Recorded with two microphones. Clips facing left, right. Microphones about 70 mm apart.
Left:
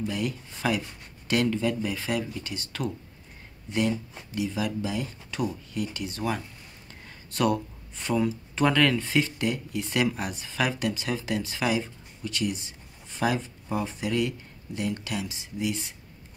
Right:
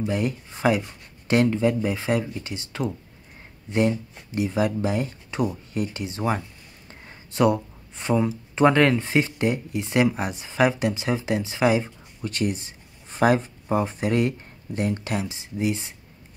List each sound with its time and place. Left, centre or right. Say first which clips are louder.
0.0 s speech: right 5 dB; right
4.4 s speech: right 6 dB; right